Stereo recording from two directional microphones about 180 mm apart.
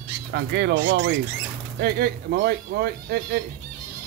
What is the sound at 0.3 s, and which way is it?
Speech, 75° right (ahead or behind).